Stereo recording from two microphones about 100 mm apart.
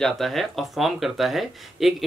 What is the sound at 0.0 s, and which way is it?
Speech, centre (ahead or behind).